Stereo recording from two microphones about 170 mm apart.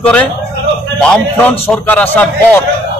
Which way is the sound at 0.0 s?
10° left (ahead or behind).